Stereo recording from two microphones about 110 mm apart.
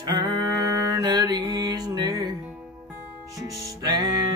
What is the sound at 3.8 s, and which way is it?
Music, 35° right (ahead or behind).